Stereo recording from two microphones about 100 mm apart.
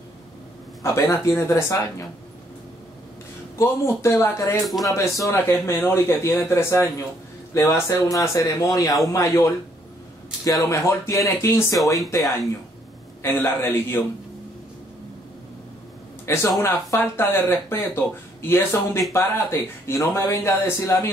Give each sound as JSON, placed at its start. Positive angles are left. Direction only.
{"t": 0.9, "sound": "speech", "side_deg": 30}
{"t": 3.5, "sound": "speech", "side_deg": 30}
{"t": 4.6, "sound": "speech", "side_deg": 0}
{"t": 5.1, "sound": "speech", "side_deg": 35}
{"t": 13.2, "sound": "speech", "side_deg": 25}
{"t": 16.3, "sound": "speech", "side_deg": 30}